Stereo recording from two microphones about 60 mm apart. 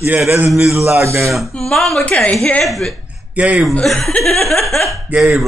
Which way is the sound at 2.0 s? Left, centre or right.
Centre.